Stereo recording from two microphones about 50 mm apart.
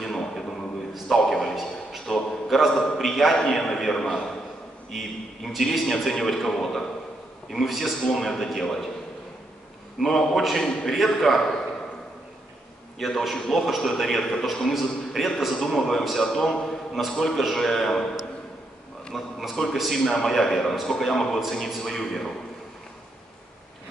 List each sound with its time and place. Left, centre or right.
0.0 s a sound: centre
2.7 s a man's voice: centre
3.0 s a man's voice: centre
10.0 s a man's voice: centre
13.0 s a man's voice: centre
19.1 s a man's voice: centre